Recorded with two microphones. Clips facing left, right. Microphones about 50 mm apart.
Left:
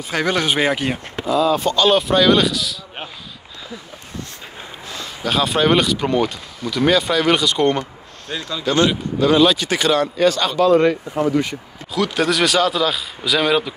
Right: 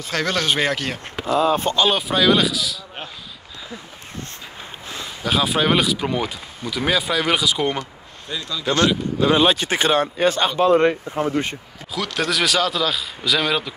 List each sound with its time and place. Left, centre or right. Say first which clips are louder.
0.1 s speech: left 2 dB; centre
1.2 s speech: left 1 dB; right
1.9 s speech: left 5 dB; centre
5.0 s speech: left 1 dB; centre
8.4 s speech: left 2 dB; left
9.2 s speech: left 3 dB; right
11.9 s speech: left 4 dB; centre